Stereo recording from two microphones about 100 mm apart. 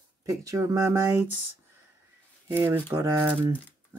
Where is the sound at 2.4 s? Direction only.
20° right (ahead or behind).